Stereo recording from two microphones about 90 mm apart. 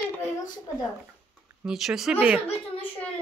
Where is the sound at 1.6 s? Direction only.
5° right (ahead or behind).